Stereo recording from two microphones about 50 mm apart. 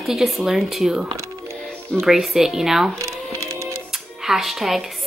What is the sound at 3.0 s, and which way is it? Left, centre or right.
Music, right.